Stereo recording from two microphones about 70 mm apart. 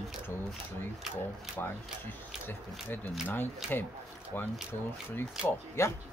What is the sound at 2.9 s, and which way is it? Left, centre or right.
Speech, left.